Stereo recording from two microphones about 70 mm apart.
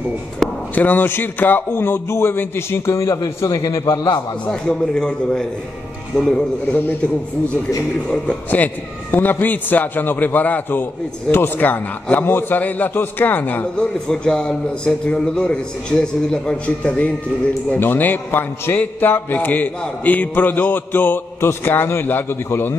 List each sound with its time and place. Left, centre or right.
0.7 s a man's voice: left
3.0 s a man's voice: left
4.5 s a man's voice: centre
9.1 s a man's voice: left
13.7 s a man's voice: centre; by 22.8 s left